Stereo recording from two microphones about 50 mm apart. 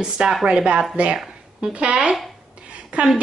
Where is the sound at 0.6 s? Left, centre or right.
Centre.